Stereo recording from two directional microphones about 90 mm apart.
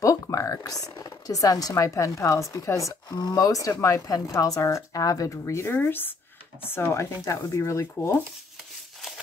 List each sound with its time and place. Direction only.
0.0 s speech: 40° left (ahead or behind)
3.1 s speech: 50° left (ahead or behind); by 8.2 s 30° left (ahead or behind)